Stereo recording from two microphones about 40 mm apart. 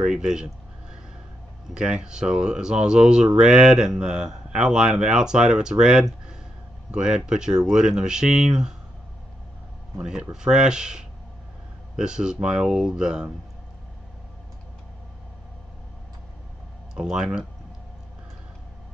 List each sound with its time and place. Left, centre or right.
0.0 s speech: centre
1.7 s speech: right
10.0 s speech: centre
16.9 s speech: centre